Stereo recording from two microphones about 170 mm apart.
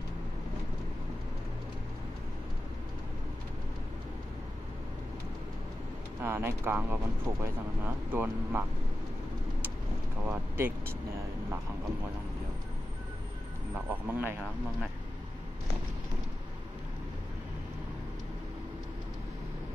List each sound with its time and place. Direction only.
6.2 s speech: 15° right (ahead or behind)
10.2 s speech: 10° right (ahead or behind)
14.0 s speech: 10° right (ahead or behind)